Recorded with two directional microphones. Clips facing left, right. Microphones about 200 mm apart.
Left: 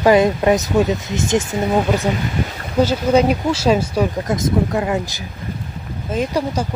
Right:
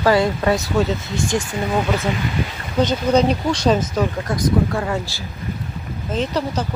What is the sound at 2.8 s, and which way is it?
Speech, 5° left (ahead or behind).